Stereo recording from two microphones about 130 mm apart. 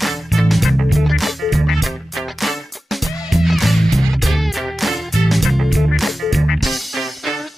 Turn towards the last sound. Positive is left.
turn(degrees=0)  # may be behind; listen again after turning